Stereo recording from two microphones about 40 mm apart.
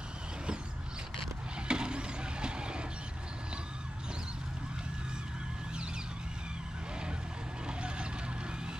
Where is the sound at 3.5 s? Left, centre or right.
Right.